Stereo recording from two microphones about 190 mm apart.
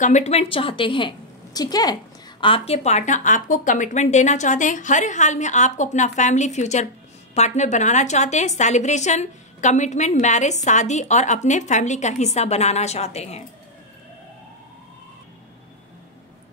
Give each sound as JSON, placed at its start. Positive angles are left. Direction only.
{"t": 0.0, "sound": "a woman's voice", "side_deg": 35}